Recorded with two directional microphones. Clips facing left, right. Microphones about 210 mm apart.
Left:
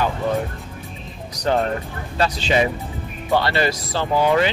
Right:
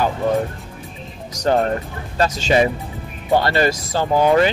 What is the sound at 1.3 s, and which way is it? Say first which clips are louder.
Music: right 3 dB; 45° right (ahead or behind).